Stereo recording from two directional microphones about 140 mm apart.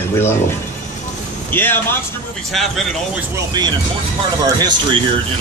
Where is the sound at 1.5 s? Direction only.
15° left (ahead or behind).